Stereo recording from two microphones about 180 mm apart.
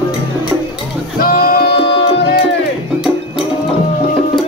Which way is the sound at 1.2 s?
60° left (ahead or behind).